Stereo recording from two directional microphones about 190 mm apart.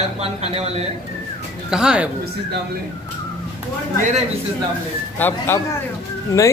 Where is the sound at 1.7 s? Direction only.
5° right (ahead or behind).